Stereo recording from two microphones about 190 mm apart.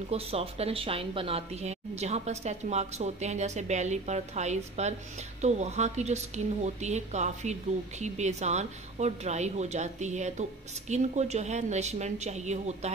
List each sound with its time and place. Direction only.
0.1 s a woman's voice: 30° right (ahead or behind)